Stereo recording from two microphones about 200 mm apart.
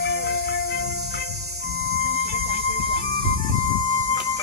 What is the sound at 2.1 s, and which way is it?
Music, 90° right.